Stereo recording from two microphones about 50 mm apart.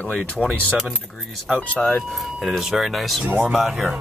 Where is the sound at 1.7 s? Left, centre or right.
Left.